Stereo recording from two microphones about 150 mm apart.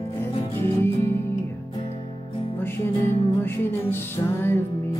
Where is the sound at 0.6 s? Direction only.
20° left (ahead or behind).